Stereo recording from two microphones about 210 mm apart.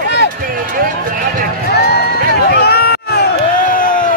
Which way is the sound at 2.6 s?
50° left (ahead or behind).